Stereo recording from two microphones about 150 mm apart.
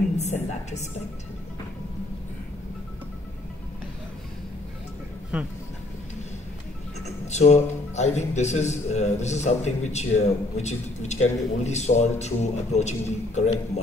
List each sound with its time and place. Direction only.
0.2 s a man's voice: 50° left (ahead or behind)
5.3 s speech: 5° right (ahead or behind)
7.2 s a man's voice: 50° left (ahead or behind)